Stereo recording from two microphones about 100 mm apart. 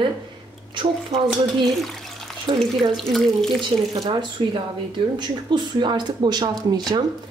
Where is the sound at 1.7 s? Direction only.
Centre (ahead or behind).